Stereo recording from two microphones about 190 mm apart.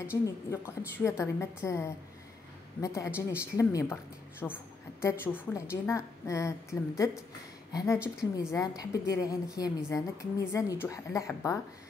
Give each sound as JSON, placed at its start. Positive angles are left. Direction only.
{"t": 0.0, "sound": "a woman's voice", "side_deg": 15}